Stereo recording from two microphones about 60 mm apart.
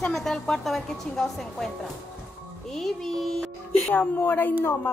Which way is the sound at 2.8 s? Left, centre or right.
Centre.